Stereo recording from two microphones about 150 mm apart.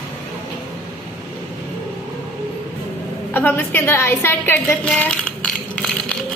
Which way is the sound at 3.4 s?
10° left (ahead or behind).